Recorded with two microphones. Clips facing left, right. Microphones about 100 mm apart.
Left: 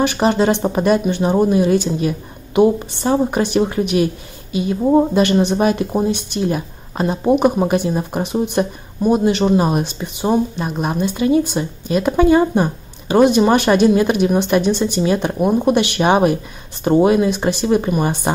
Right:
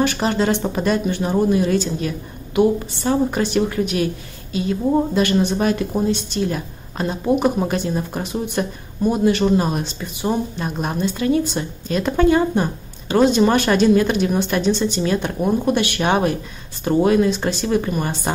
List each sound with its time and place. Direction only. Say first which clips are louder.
0.0 s a woman's voice: left 4 dB; 20° left (ahead or behind)
10.6 s a woman's voice: left 3 dB; 5° left (ahead or behind)